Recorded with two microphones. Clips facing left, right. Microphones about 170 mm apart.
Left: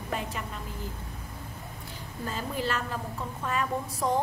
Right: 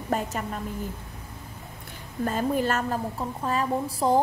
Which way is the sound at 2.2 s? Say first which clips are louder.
Right 7 dB; 50° right (ahead or behind).